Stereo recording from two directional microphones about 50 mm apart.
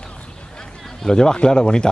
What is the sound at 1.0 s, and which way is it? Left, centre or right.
Speech, centre.